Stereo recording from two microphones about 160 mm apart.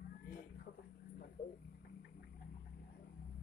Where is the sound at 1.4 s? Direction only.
60° left (ahead or behind).